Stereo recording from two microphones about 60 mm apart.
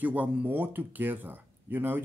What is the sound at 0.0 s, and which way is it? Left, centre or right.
Speech, right.